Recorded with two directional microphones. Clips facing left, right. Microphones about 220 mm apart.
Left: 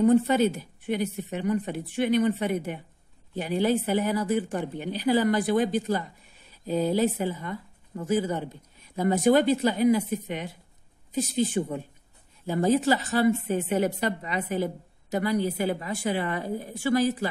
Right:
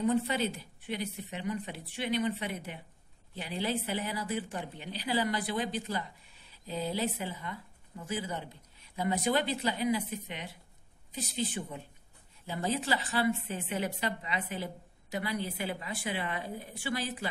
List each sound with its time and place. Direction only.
0.0 s a woman's voice: 45° left (ahead or behind)